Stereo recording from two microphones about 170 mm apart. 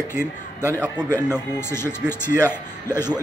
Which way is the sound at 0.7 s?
15° right (ahead or behind).